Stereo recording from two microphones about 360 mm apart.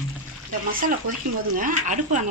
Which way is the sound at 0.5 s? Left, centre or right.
Right.